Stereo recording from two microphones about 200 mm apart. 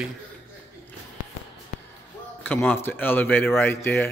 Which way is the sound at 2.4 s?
10° left (ahead or behind).